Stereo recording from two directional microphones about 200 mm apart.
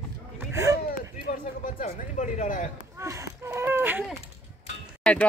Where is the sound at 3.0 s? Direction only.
15° right (ahead or behind).